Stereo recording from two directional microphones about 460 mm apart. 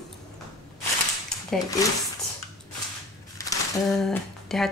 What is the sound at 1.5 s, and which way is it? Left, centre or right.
Speech, centre.